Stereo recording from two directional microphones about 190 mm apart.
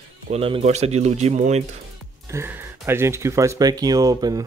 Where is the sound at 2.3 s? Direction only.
10° right (ahead or behind).